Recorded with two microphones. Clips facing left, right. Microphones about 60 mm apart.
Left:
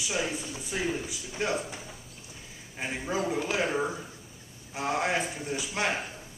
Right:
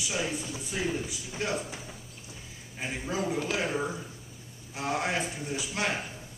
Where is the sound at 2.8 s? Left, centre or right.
Centre.